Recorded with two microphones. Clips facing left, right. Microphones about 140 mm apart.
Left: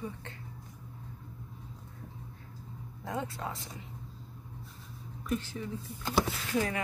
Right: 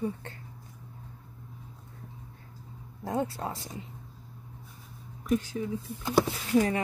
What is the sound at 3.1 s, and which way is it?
Speech, 35° right (ahead or behind).